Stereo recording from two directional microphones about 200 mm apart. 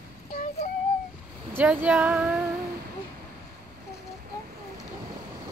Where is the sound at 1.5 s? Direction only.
10° right (ahead or behind).